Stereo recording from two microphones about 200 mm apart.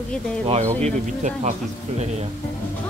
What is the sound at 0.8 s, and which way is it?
Speech, 35° right (ahead or behind).